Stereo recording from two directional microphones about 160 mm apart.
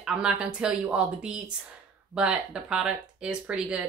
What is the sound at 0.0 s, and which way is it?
Speech, 5° right (ahead or behind).